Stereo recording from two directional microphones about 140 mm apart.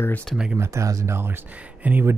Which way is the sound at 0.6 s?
20° right (ahead or behind).